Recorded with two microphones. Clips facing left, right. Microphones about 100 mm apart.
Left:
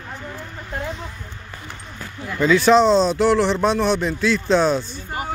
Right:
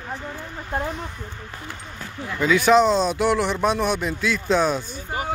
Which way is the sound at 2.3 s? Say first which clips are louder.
Left 2 dB; 10° right (ahead or behind).